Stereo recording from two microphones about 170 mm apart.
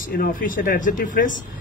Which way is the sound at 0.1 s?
60° left (ahead or behind).